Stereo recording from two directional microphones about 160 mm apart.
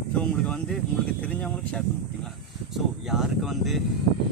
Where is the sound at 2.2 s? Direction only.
Centre (ahead or behind).